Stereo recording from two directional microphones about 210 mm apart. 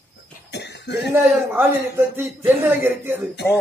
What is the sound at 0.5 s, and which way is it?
Cough, 55° left (ahead or behind).